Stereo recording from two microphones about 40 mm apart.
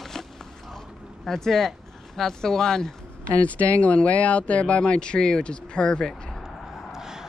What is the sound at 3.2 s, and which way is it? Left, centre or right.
Speech, left.